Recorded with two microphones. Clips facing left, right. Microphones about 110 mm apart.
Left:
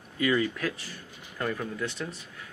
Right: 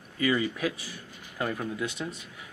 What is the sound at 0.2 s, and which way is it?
Speech, 5° right (ahead or behind).